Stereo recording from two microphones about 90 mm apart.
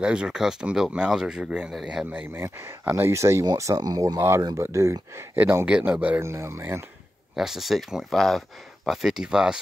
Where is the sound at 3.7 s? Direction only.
45° right (ahead or behind).